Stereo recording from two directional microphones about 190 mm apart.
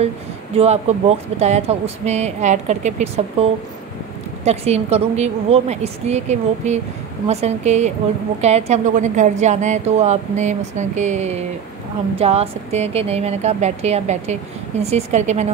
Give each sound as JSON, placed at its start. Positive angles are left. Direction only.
{"t": 0.6, "sound": "a woman's voice", "side_deg": -35}
{"t": 4.5, "sound": "a woman's voice", "side_deg": -35}